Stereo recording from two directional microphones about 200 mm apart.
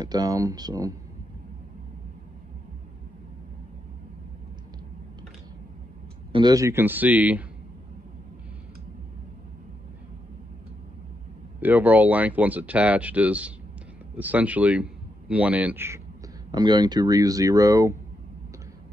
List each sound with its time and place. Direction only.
0.0 s speech: 20° right (ahead or behind)
6.3 s speech: 20° right (ahead or behind)
11.6 s speech: 10° right (ahead or behind)
16.5 s speech: 20° right (ahead or behind)